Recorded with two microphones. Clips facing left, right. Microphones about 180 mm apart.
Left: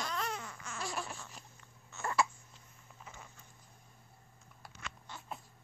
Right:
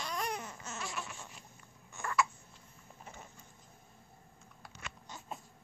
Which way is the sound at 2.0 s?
15° right (ahead or behind).